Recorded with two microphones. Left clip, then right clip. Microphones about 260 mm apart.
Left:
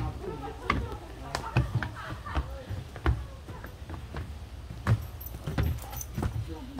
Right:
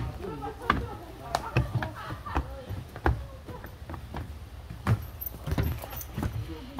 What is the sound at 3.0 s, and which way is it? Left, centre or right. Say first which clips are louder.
Music: right 5 dB; right.